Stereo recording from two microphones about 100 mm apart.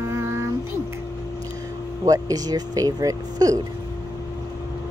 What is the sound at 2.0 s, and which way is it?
Speech, 35° right (ahead or behind).